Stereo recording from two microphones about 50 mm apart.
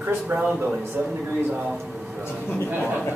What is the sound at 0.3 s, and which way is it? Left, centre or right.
Speech, right.